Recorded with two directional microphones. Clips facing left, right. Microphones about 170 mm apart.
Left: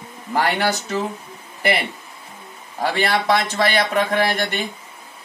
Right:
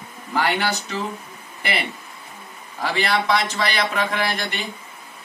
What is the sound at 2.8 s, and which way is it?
Speech, 45° left (ahead or behind).